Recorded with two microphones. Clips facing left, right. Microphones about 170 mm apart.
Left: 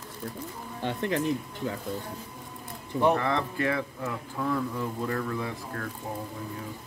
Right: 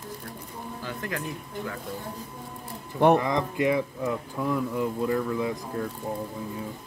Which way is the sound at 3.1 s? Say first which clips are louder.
Right 3 dB; 15° right (ahead or behind).